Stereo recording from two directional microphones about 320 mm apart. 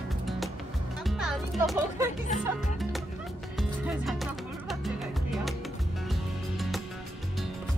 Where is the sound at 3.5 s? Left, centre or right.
Centre.